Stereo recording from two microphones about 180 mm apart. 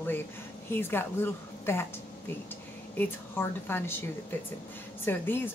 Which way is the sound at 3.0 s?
10° left (ahead or behind).